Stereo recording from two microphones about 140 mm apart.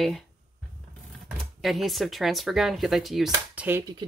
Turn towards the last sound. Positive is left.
turn(degrees=-10)  # may be behind; listen again after turning